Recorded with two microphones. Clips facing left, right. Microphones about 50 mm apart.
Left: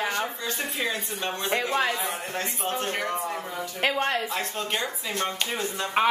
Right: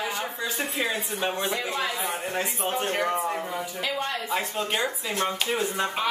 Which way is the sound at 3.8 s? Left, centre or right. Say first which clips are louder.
Left 6 dB; left.